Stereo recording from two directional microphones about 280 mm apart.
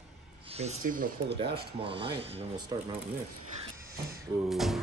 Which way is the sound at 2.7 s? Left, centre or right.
Centre.